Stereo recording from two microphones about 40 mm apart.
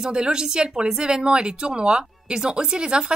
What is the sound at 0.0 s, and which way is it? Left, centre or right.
A woman's voice, centre.